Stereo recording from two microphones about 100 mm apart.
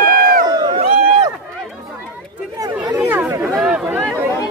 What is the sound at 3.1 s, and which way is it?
Chatter, 20° right (ahead or behind).